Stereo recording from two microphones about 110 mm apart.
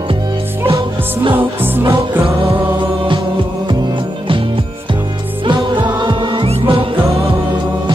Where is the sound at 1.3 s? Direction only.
20° right (ahead or behind).